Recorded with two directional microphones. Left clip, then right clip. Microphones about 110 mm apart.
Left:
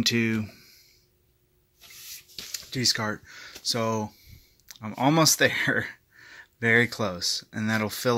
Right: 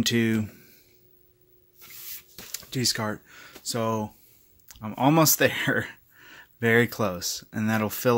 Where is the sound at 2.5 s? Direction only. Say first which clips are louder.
Left 2 dB; 25° right (ahead or behind).